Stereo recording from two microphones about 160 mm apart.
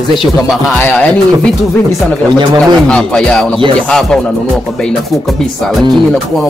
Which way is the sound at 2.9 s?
5° left (ahead or behind).